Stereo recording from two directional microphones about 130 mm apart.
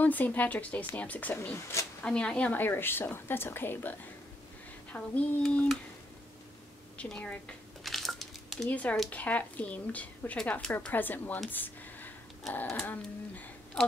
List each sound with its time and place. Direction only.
0.0 s speech: 15° left (ahead or behind)
2.0 s speech: 5° left (ahead or behind)
4.9 s speech: 10° left (ahead or behind)
7.0 s a sound: 10° left (ahead or behind)
8.6 s speech: 10° left (ahead or behind)
11.5 s a sound: 15° left (ahead or behind)
12.8 s speech: 10° left (ahead or behind)